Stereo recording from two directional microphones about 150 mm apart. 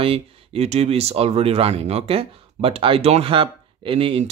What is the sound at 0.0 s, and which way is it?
Speech, 40° right (ahead or behind).